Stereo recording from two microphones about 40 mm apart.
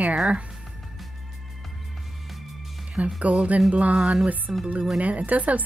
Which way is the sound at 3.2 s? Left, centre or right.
Right.